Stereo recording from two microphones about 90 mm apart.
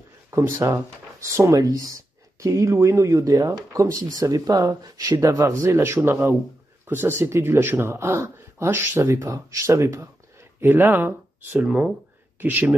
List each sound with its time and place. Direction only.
0.3 s speech: 30° right (ahead or behind)
11.6 s speech: 10° right (ahead or behind)